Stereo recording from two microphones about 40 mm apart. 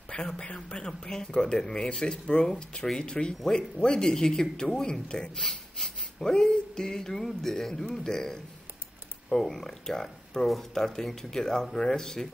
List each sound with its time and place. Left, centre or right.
0.4 s speech: left